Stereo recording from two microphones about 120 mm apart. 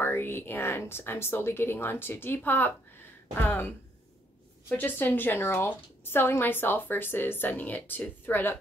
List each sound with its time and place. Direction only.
0.0 s a woman's voice: 20° left (ahead or behind)